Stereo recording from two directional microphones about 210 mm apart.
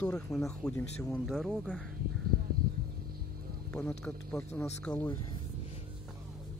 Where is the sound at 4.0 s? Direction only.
5° left (ahead or behind).